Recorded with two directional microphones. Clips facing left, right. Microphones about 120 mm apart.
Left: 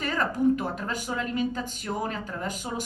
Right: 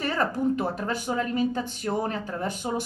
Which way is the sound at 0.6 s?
35° right (ahead or behind).